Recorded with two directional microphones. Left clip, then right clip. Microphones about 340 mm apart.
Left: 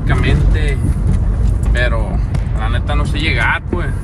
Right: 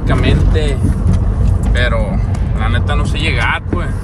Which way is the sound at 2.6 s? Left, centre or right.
Centre.